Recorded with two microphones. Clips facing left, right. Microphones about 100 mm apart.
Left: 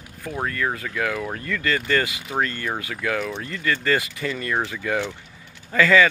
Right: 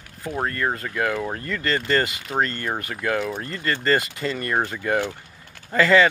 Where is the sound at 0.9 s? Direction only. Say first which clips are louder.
Right 2 dB; 5° right (ahead or behind).